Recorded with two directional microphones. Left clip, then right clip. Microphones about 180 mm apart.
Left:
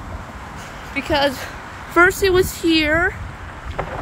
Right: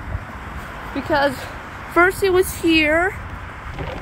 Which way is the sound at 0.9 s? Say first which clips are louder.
Even; 10° left (ahead or behind).